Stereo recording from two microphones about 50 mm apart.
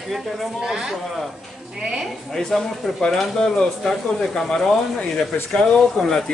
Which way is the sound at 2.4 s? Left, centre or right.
Centre.